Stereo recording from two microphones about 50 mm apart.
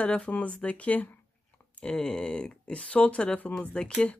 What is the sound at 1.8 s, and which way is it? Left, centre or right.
Speech, centre.